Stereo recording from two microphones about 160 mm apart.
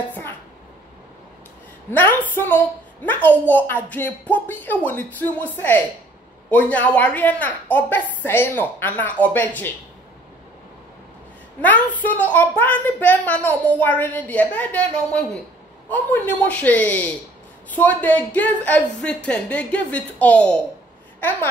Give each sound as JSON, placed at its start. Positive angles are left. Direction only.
{"t": 1.9, "sound": "a woman's voice", "side_deg": 15}
{"t": 11.6, "sound": "a woman's voice", "side_deg": 10}
{"t": 21.2, "sound": "babbling", "side_deg": 15}